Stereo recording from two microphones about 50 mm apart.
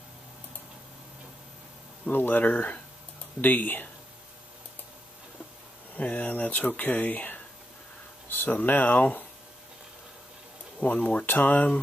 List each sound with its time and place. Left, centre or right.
2.1 s speech: left
3.3 s speech: left
5.9 s speech: left
10.8 s speech: left